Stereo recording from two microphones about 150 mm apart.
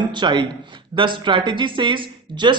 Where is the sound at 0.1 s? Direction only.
30° right (ahead or behind).